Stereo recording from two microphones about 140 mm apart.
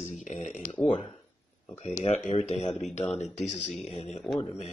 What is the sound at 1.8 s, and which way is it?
Speech, 55° left (ahead or behind).